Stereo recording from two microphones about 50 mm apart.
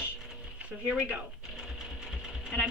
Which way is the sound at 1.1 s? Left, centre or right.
Centre.